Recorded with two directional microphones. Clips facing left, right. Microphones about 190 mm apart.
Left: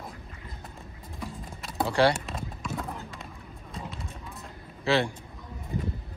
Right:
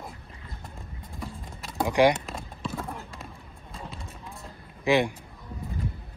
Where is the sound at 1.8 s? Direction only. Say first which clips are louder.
Right 2 dB; 15° right (ahead or behind).